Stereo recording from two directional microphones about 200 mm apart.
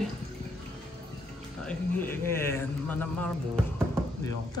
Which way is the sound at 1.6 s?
10° left (ahead or behind).